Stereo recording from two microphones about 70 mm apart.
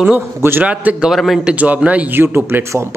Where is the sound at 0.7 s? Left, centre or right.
Centre.